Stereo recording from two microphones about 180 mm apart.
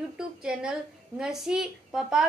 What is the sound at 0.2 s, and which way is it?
A woman's voice, 5° right (ahead or behind).